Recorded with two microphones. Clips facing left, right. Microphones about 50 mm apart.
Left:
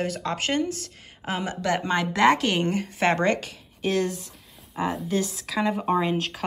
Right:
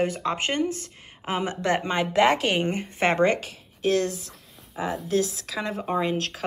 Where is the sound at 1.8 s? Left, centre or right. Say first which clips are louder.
Left 2 dB; centre.